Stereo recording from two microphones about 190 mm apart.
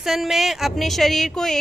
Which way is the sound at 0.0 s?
Centre (ahead or behind).